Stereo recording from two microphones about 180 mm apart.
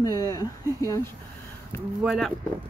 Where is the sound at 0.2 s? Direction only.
20° left (ahead or behind).